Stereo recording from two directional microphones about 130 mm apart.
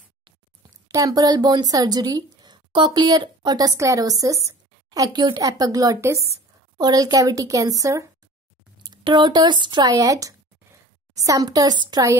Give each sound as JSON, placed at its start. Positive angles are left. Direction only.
{"t": 0.8, "sound": "speech", "side_deg": -25}